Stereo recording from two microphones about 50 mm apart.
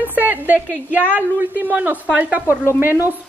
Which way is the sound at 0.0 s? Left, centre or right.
Right.